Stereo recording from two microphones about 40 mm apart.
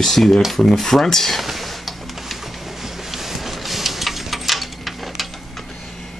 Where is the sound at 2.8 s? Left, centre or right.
Centre.